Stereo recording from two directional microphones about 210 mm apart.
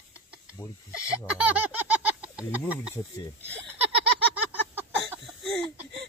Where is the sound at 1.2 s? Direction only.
5° right (ahead or behind).